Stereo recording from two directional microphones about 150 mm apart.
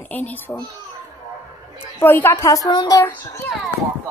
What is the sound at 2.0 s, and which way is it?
A woman's voice, 15° left (ahead or behind).